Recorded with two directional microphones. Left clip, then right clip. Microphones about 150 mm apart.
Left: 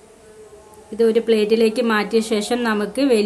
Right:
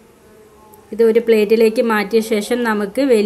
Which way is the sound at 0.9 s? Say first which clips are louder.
Right 4 dB; 15° right (ahead or behind).